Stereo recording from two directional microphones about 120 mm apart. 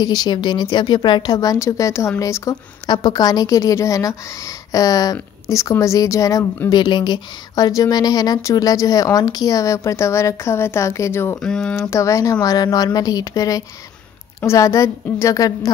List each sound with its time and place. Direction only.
0.0 s speech: 35° left (ahead or behind)
6.7 s speech: 40° left (ahead or behind); by 11.3 s 20° left (ahead or behind)
11.4 s speech: 5° left (ahead or behind)
11.9 s speech: 25° left (ahead or behind)